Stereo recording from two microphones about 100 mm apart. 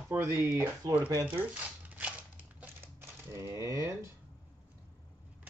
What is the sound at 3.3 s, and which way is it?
Speech, 30° right (ahead or behind).